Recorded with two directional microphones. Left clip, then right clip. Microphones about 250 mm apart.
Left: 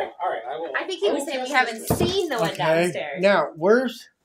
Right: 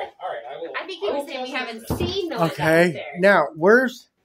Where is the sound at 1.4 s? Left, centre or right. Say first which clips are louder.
Left 6 dB; centre.